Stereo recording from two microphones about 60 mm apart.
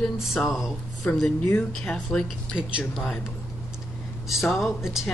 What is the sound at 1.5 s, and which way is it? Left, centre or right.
Speech, centre.